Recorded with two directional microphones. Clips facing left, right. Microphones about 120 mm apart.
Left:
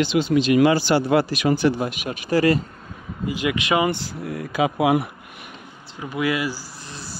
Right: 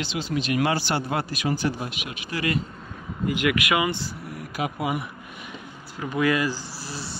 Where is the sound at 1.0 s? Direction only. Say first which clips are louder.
Left 8 dB; 90° left; by 1.9 s 70° left (ahead or behind).